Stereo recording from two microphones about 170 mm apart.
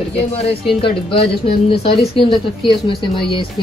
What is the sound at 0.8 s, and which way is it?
Speech, 30° left (ahead or behind).